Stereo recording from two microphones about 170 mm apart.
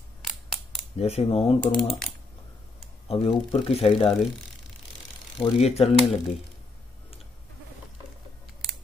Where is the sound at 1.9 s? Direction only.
5° left (ahead or behind).